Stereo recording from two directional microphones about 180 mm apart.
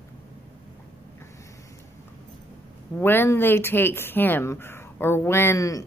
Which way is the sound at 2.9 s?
10° left (ahead or behind).